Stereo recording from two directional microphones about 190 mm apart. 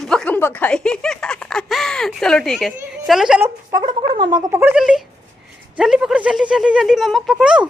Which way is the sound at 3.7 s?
25° right (ahead or behind).